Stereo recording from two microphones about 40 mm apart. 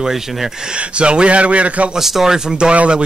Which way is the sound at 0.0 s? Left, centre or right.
Centre.